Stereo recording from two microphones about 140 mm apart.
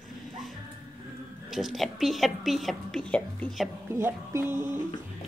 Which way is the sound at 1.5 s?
Centre (ahead or behind).